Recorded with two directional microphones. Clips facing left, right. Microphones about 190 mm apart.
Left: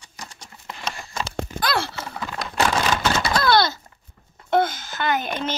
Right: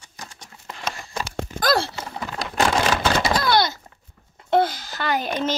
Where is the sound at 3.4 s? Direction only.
15° right (ahead or behind).